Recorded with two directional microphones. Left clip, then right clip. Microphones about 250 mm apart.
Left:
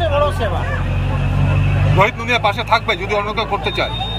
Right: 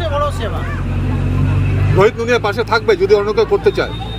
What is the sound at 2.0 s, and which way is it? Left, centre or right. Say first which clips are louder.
Speech: right 3 dB; centre.